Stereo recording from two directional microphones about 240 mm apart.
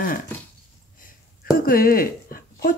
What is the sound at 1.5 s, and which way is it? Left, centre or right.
Speech, left.